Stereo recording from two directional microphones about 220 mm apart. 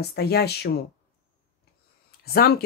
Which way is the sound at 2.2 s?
45° left (ahead or behind).